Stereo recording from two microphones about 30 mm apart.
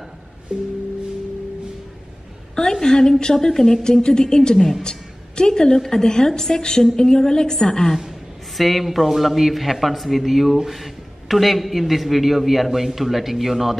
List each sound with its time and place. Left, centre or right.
0.5 s music: right
2.5 s a sound: left
3.4 s speech: centre
3.8 s a woman's voice: left
8.5 s a man's voice: centre